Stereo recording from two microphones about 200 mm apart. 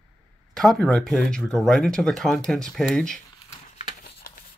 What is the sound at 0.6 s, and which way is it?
Speech, centre (ahead or behind).